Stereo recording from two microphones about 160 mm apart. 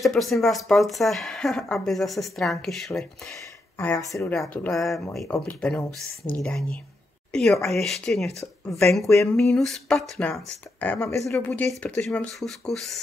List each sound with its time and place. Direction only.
0.0 s speech: centre (ahead or behind)
3.3 s speech: 15° left (ahead or behind)
4.3 s speech: centre (ahead or behind)
5.2 s speech: 20° left (ahead or behind)
5.6 s speech: 5° left (ahead or behind)
9.0 s a sound: 20° left (ahead or behind)
9.5 s speech: 5° left (ahead or behind)
11.2 s speech: 5° left (ahead or behind)